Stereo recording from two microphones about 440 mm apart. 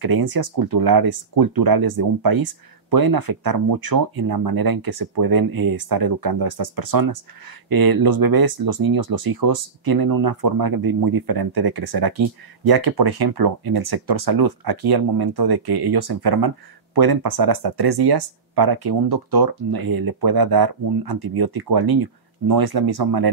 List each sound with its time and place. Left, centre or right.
0.0 s speech: right